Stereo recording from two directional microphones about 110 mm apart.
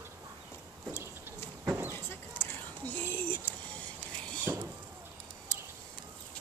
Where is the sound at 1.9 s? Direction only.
20° left (ahead or behind).